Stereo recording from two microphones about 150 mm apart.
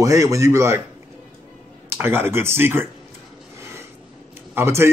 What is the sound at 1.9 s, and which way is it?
A man's voice, 15° right (ahead or behind).